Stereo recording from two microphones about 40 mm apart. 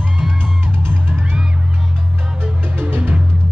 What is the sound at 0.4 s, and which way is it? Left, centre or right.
Music, right.